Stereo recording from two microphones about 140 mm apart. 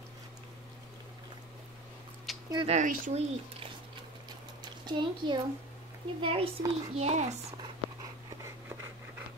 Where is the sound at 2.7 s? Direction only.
65° right (ahead or behind).